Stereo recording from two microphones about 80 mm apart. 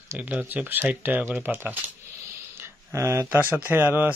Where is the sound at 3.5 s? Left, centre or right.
Right.